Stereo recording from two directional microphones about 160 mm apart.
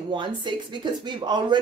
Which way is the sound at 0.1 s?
30° right (ahead or behind).